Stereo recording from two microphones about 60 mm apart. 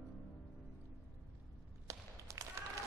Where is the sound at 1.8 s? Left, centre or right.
Right.